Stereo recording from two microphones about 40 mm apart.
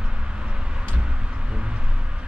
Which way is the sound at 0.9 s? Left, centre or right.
Right.